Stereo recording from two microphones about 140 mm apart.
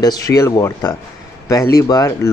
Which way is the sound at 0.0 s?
25° left (ahead or behind).